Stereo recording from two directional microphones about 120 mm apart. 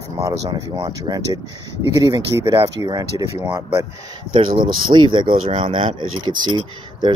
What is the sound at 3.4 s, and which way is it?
Speech, 20° right (ahead or behind).